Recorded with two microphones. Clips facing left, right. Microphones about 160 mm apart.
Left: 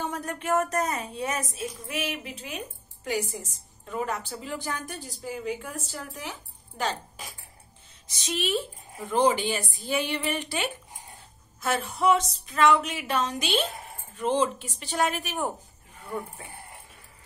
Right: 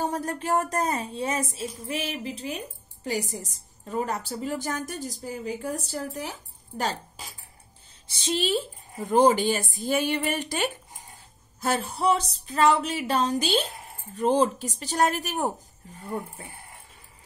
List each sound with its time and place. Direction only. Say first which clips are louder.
0.0 s speech: right 3 dB; 35° right (ahead or behind)
8.1 s a woman's voice: right 3 dB; 30° right (ahead or behind)